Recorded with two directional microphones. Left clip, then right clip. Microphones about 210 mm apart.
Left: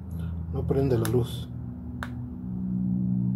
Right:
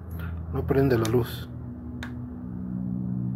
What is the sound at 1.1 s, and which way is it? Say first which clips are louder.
Speech: right 2 dB; centre (ahead or behind).